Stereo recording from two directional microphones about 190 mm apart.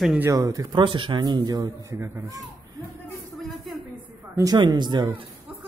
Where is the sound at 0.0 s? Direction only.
Centre (ahead or behind).